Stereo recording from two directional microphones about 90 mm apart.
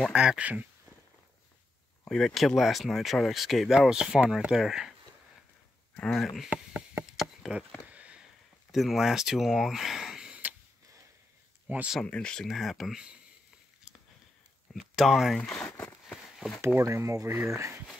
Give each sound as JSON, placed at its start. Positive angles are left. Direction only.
{"t": 0.1, "sound": "speech", "side_deg": -10}
{"t": 2.0, "sound": "speech", "side_deg": 5}
{"t": 6.0, "sound": "speech", "side_deg": 0}
{"t": 7.2, "sound": "a sound", "side_deg": -5}
{"t": 8.7, "sound": "speech", "side_deg": 0}
{"t": 12.0, "sound": "speech", "side_deg": 10}
{"t": 14.7, "sound": "speech", "side_deg": 0}
{"t": 15.7, "sound": "a sound", "side_deg": 25}
{"t": 16.6, "sound": "speech", "side_deg": -35}